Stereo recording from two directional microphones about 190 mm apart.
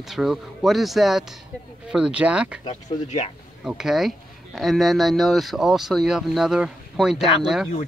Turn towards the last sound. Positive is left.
turn(degrees=-5)  # may be behind; listen again after turning